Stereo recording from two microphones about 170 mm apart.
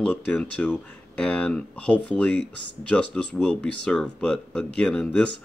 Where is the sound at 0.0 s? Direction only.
5° left (ahead or behind).